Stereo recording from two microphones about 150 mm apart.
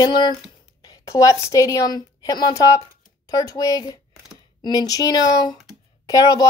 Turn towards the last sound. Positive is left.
turn(degrees=25)  # may be behind; listen again after turning